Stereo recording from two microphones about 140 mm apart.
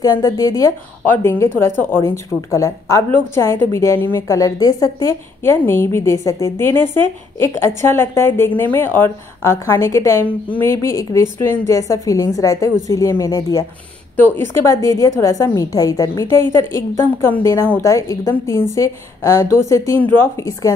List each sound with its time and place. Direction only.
0.0 s a woman's voice: 25° left (ahead or behind)
14.1 s a woman's voice: 15° left (ahead or behind)